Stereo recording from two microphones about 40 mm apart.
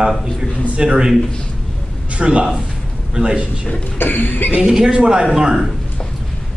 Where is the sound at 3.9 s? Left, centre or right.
Left.